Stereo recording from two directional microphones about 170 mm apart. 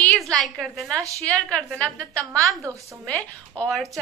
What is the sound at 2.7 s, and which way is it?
Speech, 20° right (ahead or behind).